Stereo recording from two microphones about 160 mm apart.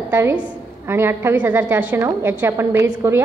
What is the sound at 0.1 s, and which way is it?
A woman's voice, 15° right (ahead or behind).